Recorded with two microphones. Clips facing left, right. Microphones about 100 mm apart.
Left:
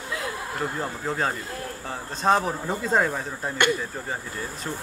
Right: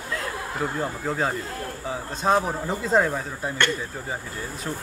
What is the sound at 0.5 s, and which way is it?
Speech, centre (ahead or behind).